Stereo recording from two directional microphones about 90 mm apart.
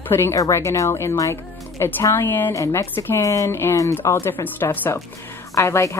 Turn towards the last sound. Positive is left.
turn(degrees=35)  # may be behind; listen again after turning